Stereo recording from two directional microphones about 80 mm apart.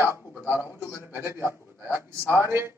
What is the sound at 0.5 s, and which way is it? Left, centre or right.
A man's voice, right.